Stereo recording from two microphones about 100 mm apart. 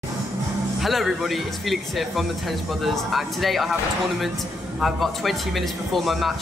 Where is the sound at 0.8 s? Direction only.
Centre (ahead or behind).